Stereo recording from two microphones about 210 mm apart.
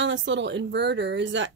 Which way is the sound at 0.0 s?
60° right (ahead or behind).